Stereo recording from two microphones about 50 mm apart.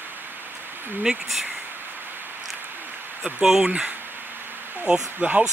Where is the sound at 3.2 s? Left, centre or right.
Centre.